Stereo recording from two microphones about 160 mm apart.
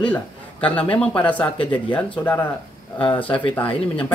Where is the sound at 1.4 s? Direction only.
30° left (ahead or behind).